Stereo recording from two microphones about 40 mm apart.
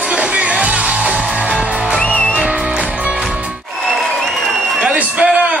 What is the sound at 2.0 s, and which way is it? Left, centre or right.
Music, left.